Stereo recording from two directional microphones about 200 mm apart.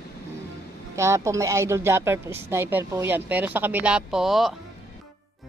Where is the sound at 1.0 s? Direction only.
15° right (ahead or behind).